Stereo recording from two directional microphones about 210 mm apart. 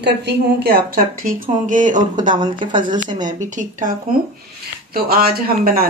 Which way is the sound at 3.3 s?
35° right (ahead or behind).